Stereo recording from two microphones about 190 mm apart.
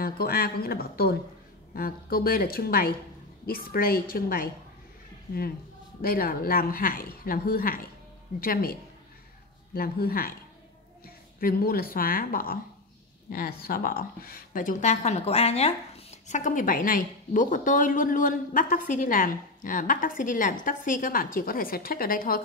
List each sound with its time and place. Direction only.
0.0 s a woman's voice: 50° left (ahead or behind)
5.9 s a woman's voice: 50° left (ahead or behind)
9.8 s a woman's voice: 50° left (ahead or behind)
11.3 s a woman's voice: 50° left (ahead or behind)